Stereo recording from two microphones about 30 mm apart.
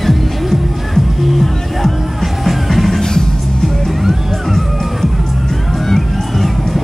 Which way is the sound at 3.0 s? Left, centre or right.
Centre.